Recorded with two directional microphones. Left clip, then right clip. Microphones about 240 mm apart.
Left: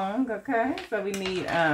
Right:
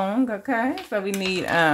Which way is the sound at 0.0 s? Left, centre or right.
Right.